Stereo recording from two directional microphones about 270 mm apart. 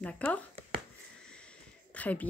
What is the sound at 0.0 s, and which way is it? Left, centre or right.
Speech, centre.